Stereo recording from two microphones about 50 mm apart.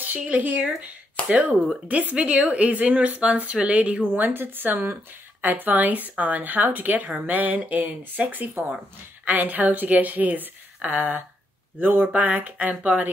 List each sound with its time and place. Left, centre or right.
0.2 s a woman's voice: right
4.2 s a woman's voice: right
12.1 s a woman's voice: right